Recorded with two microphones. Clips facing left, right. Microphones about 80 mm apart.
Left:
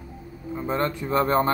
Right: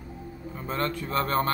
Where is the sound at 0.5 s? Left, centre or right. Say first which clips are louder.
Left 4 dB; centre.